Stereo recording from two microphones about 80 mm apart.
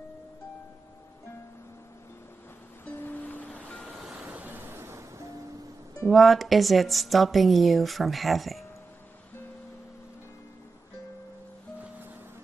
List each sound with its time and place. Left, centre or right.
2.8 s music: left; by 4.1 s centre
4.1 s vehicle: centre; by 5.0 s right
6.0 s a woman's voice: centre